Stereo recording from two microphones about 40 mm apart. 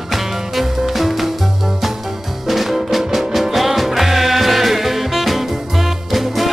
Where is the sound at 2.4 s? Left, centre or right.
Centre.